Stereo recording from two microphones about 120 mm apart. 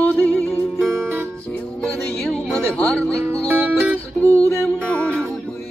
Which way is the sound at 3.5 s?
20° right (ahead or behind).